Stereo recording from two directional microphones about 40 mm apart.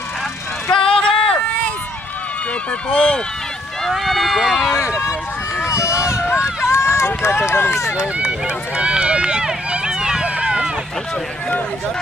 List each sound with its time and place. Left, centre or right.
0.7 s a sound: centre
2.9 s speech: left
3.9 s speech: centre
6.6 s run: left
8.0 s run: right